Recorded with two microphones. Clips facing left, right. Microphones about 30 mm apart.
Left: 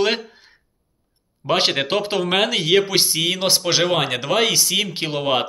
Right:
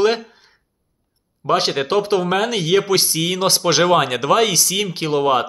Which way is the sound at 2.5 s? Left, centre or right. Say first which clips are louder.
Right 1 dB; left.